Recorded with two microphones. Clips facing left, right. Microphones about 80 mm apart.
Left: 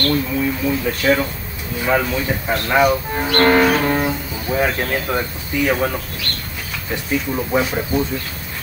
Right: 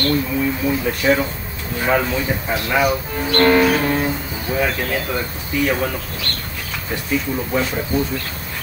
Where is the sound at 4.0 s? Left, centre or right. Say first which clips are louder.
Left 1 dB; centre.